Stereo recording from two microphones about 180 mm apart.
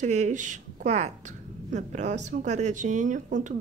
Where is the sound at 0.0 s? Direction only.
40° right (ahead or behind).